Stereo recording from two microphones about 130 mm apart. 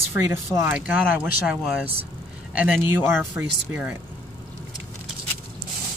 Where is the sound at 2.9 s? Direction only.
20° right (ahead or behind).